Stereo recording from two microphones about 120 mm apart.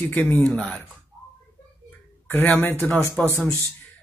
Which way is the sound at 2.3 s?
15° left (ahead or behind).